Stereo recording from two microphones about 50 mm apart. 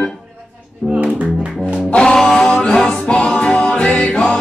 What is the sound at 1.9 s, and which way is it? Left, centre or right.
Music, centre.